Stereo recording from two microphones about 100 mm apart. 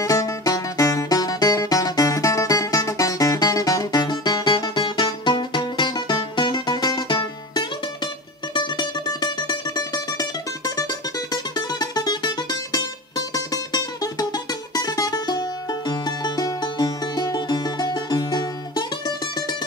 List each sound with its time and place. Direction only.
0.0 s music: 35° left (ahead or behind)